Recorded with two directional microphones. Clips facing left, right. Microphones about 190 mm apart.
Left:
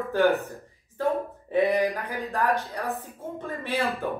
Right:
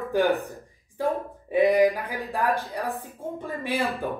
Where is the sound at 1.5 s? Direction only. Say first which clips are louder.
Right 4 dB; 10° right (ahead or behind).